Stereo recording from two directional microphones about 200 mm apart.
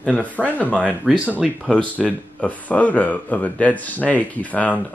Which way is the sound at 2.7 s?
5° left (ahead or behind).